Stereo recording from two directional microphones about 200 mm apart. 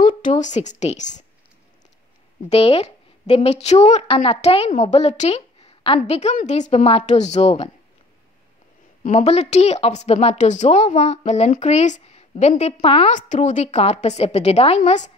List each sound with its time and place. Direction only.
0.0 s a woman's voice: 40° left (ahead or behind)
2.5 s a woman's voice: 30° left (ahead or behind)
9.0 s a woman's voice: 35° left (ahead or behind)